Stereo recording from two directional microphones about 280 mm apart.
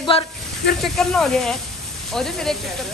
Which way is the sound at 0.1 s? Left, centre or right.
Left.